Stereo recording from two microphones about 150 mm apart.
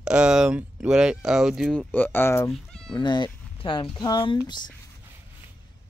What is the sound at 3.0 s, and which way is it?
Speech, 30° left (ahead or behind).